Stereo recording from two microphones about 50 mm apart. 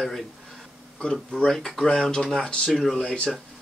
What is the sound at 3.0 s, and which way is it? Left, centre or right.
Speech, centre.